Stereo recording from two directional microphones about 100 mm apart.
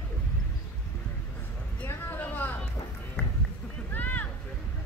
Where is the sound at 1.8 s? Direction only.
20° left (ahead or behind).